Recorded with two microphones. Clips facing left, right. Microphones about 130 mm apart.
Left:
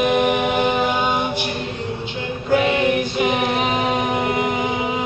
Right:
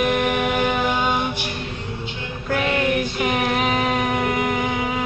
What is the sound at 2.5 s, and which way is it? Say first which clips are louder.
Female singing: left 4 dB; 20° left (ahead or behind).